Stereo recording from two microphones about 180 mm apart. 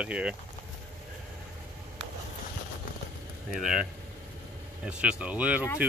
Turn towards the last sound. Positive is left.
turn(degrees=-10)  # may be behind; listen again after turning